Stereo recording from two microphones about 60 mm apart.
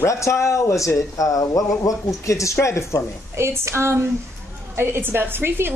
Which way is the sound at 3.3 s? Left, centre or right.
Right.